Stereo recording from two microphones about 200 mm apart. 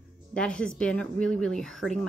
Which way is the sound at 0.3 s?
5° left (ahead or behind).